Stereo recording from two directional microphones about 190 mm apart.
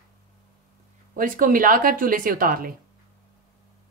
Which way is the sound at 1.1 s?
45° right (ahead or behind).